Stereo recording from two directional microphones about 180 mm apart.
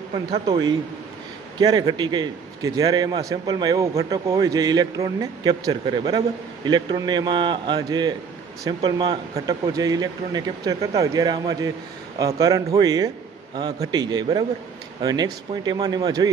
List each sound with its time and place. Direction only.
0.3 s a man's voice: 25° right (ahead or behind)